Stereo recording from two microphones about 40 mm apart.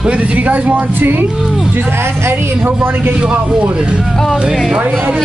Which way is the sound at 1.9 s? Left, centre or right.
Right.